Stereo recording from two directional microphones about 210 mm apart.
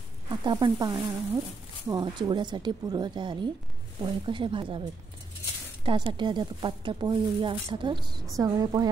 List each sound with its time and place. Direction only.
0.5 s speech: 20° right (ahead or behind)
5.9 s a woman's voice: 25° right (ahead or behind)